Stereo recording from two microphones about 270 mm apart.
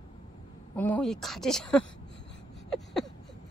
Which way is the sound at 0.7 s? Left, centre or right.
Centre.